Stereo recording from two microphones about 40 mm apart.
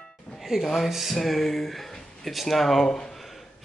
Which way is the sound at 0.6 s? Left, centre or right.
Centre.